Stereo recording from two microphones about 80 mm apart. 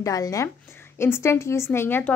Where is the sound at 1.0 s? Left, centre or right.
Left.